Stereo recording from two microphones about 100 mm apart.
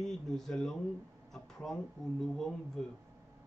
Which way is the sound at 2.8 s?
5° left (ahead or behind).